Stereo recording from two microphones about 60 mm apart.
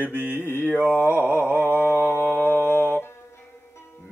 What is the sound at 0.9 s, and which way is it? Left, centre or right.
Speech, left.